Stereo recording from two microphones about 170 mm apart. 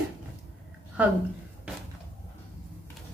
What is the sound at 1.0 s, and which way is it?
Speech, 10° right (ahead or behind).